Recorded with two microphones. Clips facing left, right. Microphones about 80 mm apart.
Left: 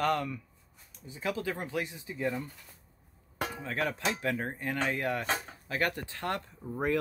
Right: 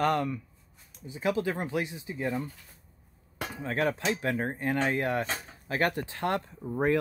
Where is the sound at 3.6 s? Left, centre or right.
Right.